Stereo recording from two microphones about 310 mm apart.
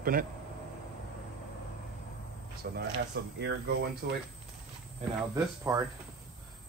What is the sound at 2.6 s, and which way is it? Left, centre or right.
Speech, right.